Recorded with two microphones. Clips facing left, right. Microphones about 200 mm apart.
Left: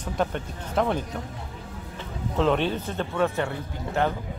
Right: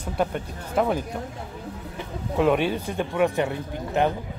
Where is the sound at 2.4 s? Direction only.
10° right (ahead or behind).